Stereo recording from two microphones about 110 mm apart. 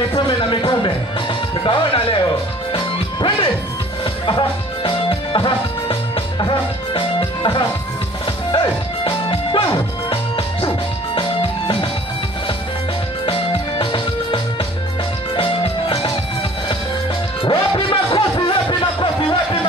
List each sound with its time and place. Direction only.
0.1 s a sound: 45° left (ahead or behind)
1.6 s speech: 50° left (ahead or behind)
2.7 s music: 50° left (ahead or behind)
13.2 s music: 50° left (ahead or behind)
17.5 s music: 45° left (ahead or behind)